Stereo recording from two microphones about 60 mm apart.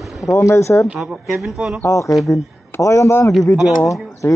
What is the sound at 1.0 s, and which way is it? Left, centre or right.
Speech, centre.